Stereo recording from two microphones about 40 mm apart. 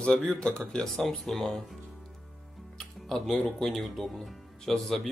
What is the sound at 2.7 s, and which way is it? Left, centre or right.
Speech, centre.